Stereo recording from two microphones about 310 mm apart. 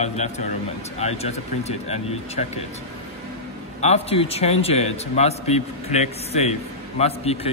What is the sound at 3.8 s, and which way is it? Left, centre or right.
A man's voice, centre.